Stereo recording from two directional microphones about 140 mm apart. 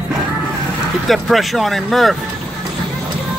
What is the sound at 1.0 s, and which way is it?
Speech, centre (ahead or behind).